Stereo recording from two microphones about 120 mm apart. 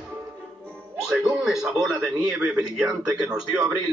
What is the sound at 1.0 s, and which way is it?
A man's voice, 5° right (ahead or behind).